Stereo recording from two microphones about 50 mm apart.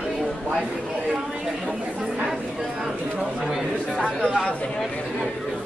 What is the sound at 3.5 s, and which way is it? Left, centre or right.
Speech, centre.